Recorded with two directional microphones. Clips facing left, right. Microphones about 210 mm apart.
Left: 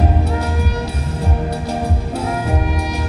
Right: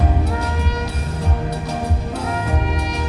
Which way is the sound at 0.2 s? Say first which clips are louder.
Left 2 dB; 25° left (ahead or behind).